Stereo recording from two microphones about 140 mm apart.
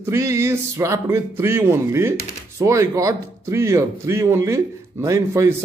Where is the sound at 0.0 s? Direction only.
20° right (ahead or behind).